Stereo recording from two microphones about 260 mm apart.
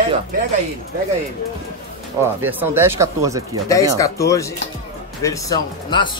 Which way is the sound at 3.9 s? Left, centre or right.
Centre.